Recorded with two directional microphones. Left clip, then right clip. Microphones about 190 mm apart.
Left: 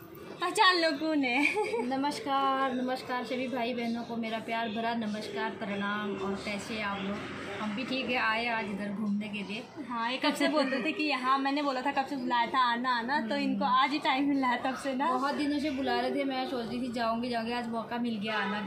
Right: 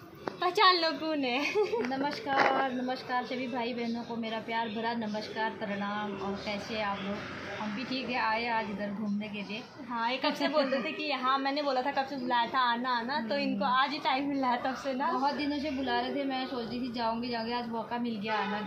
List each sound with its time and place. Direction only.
0.4 s a woman's voice: 20° right (ahead or behind)
2.0 s a woman's voice: 10° left (ahead or behind)
7.9 s a woman's voice: 10° left (ahead or behind)
9.9 s a woman's voice: 15° right (ahead or behind)
15.3 s a woman's voice: 5° left (ahead or behind)